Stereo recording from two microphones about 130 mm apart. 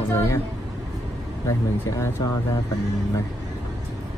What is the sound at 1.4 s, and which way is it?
Speech, 25° left (ahead or behind).